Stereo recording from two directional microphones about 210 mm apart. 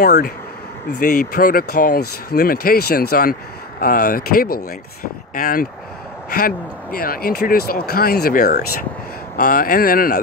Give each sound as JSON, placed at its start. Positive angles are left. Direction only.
{"t": 0.0, "sound": "speech", "side_deg": 45}